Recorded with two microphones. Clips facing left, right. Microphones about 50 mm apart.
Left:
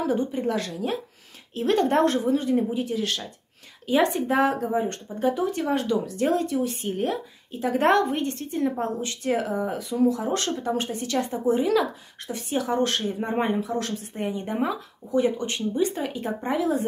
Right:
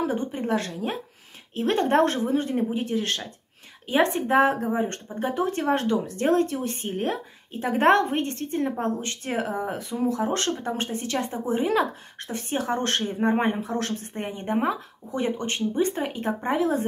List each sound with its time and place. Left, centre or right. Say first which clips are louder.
0.0 s speech: left 2 dB; right